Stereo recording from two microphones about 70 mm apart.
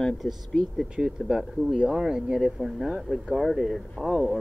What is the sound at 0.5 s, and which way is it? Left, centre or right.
Speech, centre.